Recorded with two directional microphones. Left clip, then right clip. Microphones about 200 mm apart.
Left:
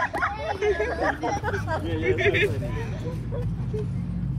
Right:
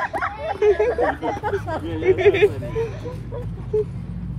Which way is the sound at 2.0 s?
15° right (ahead or behind).